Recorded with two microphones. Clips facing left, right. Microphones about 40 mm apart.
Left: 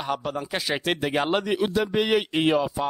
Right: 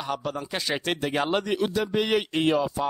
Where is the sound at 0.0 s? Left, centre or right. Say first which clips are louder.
Left 2 dB; centre.